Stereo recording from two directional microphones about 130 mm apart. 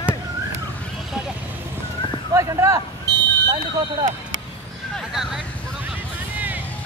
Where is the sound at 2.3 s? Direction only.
25° right (ahead or behind).